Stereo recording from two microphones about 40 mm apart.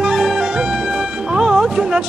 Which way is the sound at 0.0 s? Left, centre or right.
Centre.